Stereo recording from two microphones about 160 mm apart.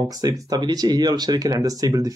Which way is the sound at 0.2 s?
25° right (ahead or behind).